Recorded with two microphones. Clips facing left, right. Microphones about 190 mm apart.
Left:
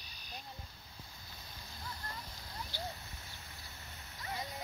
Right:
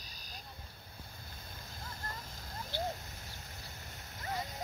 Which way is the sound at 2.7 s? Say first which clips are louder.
Right 7 dB; 55° right (ahead or behind).